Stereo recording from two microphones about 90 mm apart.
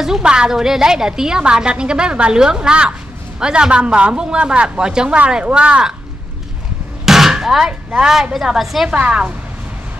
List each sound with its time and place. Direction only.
0.0 s a woman's voice: 5° right (ahead or behind)
7.1 s a woman's voice: 5° right (ahead or behind)